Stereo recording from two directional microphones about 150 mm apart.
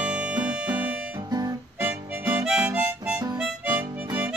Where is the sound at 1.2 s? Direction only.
25° right (ahead or behind).